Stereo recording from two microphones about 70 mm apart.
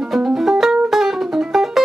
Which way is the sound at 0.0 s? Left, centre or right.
Centre.